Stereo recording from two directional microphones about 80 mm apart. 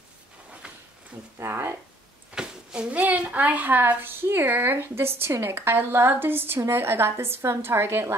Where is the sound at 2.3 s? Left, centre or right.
Centre.